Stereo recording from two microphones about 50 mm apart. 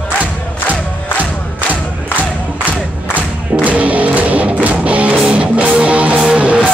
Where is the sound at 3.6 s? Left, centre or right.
Right.